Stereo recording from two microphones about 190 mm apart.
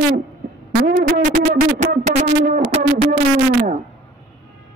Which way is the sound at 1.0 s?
45° right (ahead or behind).